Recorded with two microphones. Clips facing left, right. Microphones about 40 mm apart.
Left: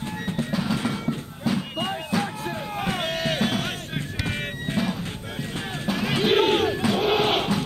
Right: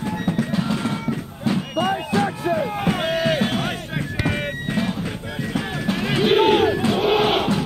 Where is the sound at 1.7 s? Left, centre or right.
Right.